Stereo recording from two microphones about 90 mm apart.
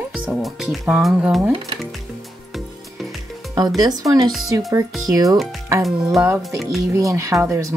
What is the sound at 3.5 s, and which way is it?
Speech, 45° right (ahead or behind).